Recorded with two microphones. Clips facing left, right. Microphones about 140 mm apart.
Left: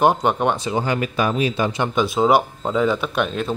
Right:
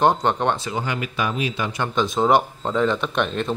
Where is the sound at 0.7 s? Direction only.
35° left (ahead or behind).